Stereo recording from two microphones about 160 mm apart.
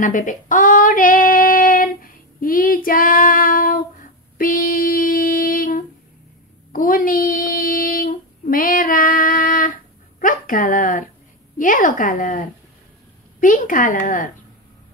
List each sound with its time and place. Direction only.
0.0 s female singing: 55° left (ahead or behind)
2.4 s child singing: 65° left (ahead or behind)
4.4 s a sound: 65° left (ahead or behind)
6.7 s child singing: 60° left (ahead or behind)
10.2 s a woman's voice: 55° left (ahead or behind)